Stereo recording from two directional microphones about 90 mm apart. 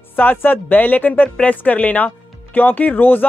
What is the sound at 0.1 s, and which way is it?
A woman's voice, 20° left (ahead or behind).